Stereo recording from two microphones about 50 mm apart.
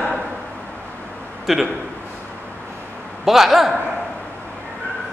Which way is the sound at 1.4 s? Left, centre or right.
Centre.